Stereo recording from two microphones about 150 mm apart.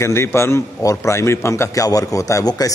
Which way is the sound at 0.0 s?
15° left (ahead or behind).